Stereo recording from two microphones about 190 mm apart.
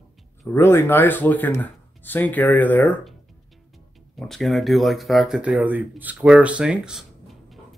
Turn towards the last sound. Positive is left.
turn(degrees=0)  # may be behind; listen again after turning